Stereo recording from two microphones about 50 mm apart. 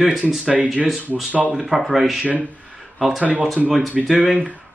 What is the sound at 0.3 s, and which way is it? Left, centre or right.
Speech, centre.